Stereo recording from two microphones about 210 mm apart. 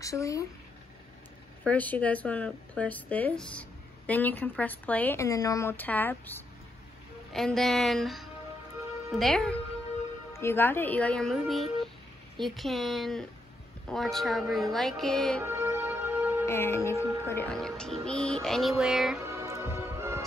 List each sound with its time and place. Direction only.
0.0 s a woman's voice: 15° left (ahead or behind)
1.6 s a woman's voice: 5° left (ahead or behind)
15.4 s music: 10° right (ahead or behind)
16.4 s a woman's voice: 10° left (ahead or behind)
19.2 s music: 15° right (ahead or behind)